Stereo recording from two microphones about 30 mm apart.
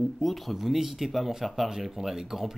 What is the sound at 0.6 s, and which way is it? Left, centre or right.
Speech, centre.